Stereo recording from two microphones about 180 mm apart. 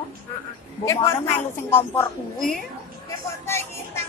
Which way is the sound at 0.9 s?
15° left (ahead or behind).